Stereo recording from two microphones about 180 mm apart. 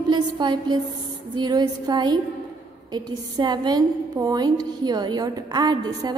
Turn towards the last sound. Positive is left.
turn(degrees=-25)  # may be behind; listen again after turning